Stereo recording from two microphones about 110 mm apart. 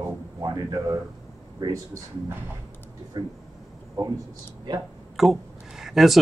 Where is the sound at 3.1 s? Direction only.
40° right (ahead or behind).